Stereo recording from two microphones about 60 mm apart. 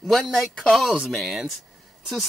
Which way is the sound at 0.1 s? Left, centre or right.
Centre.